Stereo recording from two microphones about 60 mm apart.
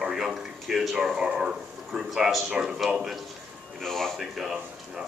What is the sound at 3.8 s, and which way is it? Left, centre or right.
Speech, centre.